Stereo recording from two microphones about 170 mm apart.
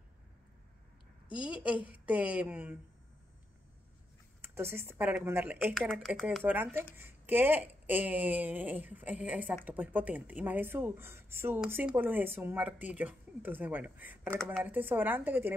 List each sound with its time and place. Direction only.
1.3 s speech: 5° right (ahead or behind)
4.4 s speech: 15° right (ahead or behind)
5.8 s speech: 5° left (ahead or behind)
14.3 s speech: 5° left (ahead or behind)
14.6 s speech: 10° right (ahead or behind)